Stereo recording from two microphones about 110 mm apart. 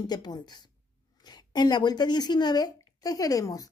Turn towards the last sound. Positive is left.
turn(degrees=35)  # may be behind; listen again after turning